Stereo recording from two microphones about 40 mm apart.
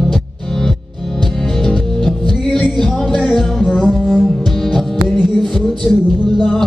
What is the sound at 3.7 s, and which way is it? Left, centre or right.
Music, left.